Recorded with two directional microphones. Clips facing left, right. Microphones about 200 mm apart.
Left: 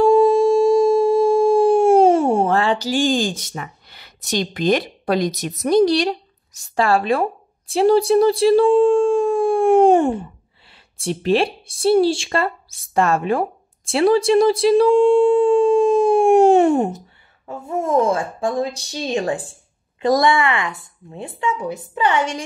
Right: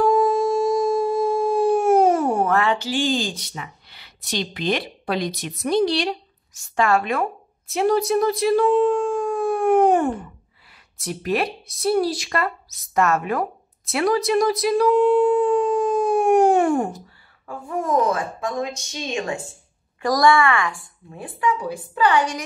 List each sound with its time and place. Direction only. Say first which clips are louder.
0.0 s a sound: left 5 dB; 25° left (ahead or behind)
10.7 s speech: left 6 dB; 30° left (ahead or behind)
20.0 s a woman's voice: left 1 dB; 25° left (ahead or behind)